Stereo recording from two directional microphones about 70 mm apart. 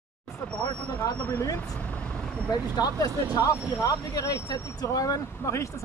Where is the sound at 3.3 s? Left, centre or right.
Left.